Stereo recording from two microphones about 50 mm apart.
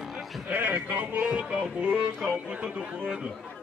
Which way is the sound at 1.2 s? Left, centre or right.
Centre.